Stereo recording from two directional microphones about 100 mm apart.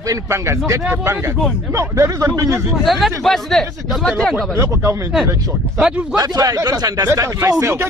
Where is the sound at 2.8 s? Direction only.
Centre (ahead or behind).